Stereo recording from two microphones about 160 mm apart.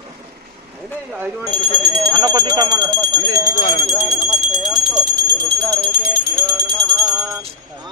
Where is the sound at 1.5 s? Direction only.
30° right (ahead or behind).